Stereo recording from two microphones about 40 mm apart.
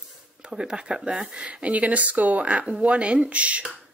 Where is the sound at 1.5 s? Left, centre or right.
Right.